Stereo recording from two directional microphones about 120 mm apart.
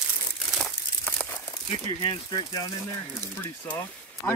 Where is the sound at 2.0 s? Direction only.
40° left (ahead or behind).